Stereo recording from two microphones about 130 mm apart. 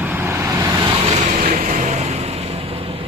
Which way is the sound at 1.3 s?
90° right.